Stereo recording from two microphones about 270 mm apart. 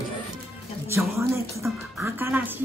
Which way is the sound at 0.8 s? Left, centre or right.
Centre.